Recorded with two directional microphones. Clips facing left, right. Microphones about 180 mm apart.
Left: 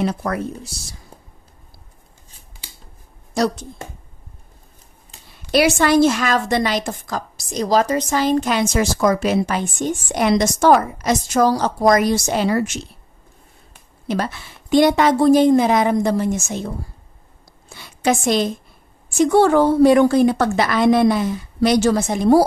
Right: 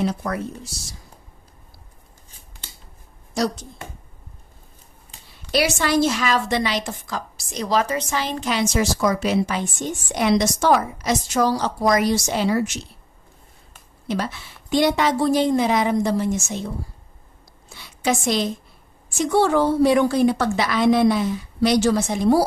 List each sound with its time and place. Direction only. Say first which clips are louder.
0.0 s speech: left 2 dB; 60° left (ahead or behind)
5.5 s a woman's voice: left 5 dB; 55° left (ahead or behind)
14.0 s a woman's voice: left 3 dB; 55° left (ahead or behind)
18.0 s a woman's voice: left 4 dB; 50° left (ahead or behind)